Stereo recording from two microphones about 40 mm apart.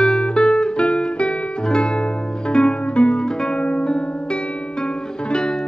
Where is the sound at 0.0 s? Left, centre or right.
Left.